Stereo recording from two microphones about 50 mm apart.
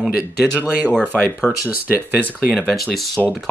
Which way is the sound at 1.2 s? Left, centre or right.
Left.